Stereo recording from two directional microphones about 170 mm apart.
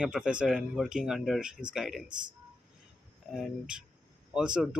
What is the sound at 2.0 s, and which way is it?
Speech, 25° right (ahead or behind).